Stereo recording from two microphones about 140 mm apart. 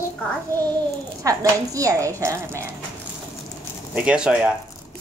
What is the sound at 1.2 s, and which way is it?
Speech, 25° right (ahead or behind).